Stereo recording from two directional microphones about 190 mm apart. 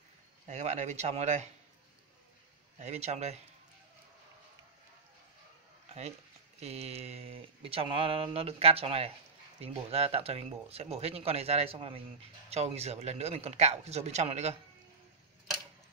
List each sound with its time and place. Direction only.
0.5 s speech: 35° right (ahead or behind)
2.8 s speech: 35° right (ahead or behind)
6.6 s speech: 35° right (ahead or behind)